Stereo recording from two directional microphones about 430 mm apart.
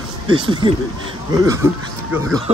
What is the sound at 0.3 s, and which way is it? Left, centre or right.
Speech, centre.